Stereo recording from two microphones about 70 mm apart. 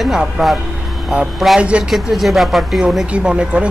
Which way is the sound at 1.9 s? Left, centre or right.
Centre.